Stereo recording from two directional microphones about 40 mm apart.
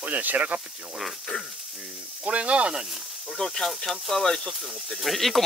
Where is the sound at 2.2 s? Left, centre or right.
Right.